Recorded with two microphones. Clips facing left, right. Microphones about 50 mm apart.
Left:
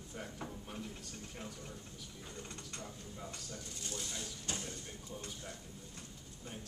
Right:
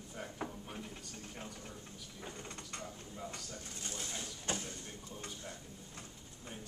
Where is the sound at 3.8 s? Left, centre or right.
Right.